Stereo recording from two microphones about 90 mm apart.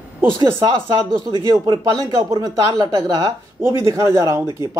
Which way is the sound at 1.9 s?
40° right (ahead or behind).